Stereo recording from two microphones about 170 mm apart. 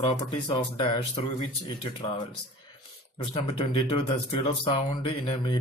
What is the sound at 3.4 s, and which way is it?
Speech, 30° left (ahead or behind).